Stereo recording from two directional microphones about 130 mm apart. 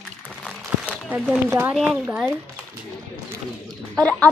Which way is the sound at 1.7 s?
5° right (ahead or behind).